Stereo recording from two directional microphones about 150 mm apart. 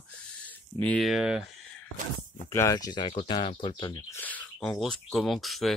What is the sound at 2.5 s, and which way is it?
Speech, 20° left (ahead or behind).